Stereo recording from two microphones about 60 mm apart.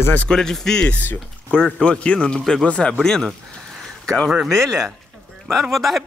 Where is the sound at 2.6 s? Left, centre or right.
Centre.